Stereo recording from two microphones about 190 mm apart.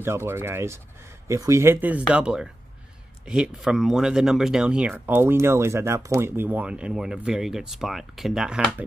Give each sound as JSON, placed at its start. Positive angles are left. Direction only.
{"t": 0.0, "sound": "speech", "side_deg": -15}